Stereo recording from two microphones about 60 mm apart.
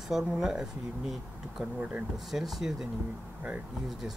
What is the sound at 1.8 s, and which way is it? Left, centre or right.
Speech, centre.